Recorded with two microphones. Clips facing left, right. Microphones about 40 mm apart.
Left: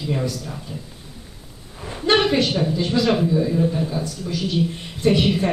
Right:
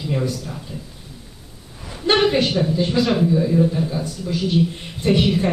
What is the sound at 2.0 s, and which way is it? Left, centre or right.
A woman's voice, centre.